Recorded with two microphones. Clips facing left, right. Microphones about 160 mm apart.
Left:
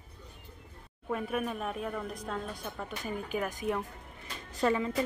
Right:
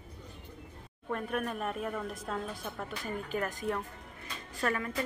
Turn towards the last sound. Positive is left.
turn(degrees=20)  # may be behind; listen again after turning